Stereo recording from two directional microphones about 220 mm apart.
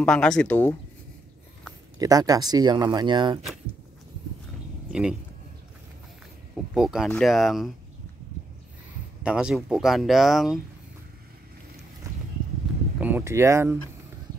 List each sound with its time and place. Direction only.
0.0 s speech: 5° left (ahead or behind)
2.0 s speech: 15° right (ahead or behind)
6.5 s speech: centre (ahead or behind)
9.2 s speech: 5° right (ahead or behind)
13.0 s speech: 10° right (ahead or behind)